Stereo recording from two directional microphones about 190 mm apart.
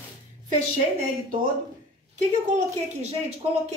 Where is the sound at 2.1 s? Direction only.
40° right (ahead or behind).